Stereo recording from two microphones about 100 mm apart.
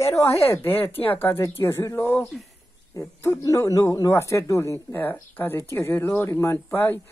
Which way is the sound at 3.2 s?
30° left (ahead or behind).